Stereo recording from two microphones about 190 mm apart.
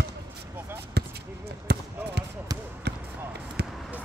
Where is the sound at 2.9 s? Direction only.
60° right (ahead or behind).